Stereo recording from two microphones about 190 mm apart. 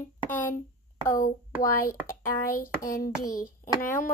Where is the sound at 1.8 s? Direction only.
50° left (ahead or behind).